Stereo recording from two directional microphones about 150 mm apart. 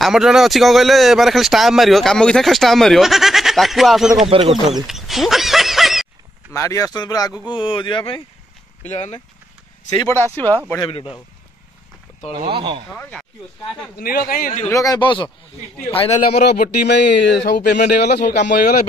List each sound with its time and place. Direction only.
0.0 s speech: 5° right (ahead or behind)
4.3 s speech: 40° right (ahead or behind)
4.6 s a sound: centre (ahead or behind)
6.5 s speech: 20° left (ahead or behind)
8.8 s speech: 50° left (ahead or behind)
10.3 s speech: 15° left (ahead or behind)
12.4 s speech: 35° right (ahead or behind)
13.9 s speech: 80° left
14.7 s speech: 20° left (ahead or behind)
15.0 s a man's voice: 35° left (ahead or behind)
16.3 s speech: 90° left